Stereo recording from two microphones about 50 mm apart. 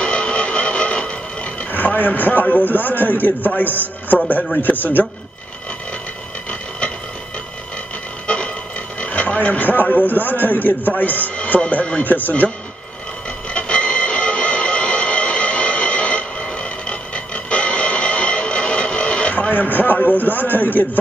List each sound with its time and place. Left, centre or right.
0.0 s music: centre
1.7 s a man's voice: left
9.0 s a man's voice: left
11.3 s music: left
11.7 s a man's voice: left
13.5 s music: centre
19.5 s a man's voice: left